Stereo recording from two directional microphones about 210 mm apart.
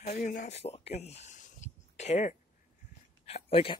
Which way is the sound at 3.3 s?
25° left (ahead or behind).